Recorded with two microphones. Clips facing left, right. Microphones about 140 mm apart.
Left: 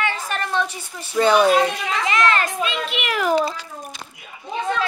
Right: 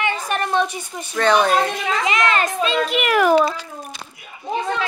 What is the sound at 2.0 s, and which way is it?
Speech, 20° right (ahead or behind).